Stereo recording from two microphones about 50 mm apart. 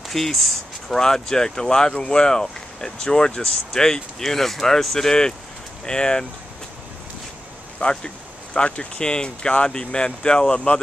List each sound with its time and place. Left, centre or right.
0.1 s speech: centre
7.8 s speech: centre